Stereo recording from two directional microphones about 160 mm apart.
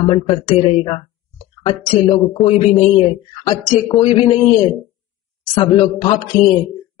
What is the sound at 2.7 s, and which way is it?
Speech, 10° left (ahead or behind).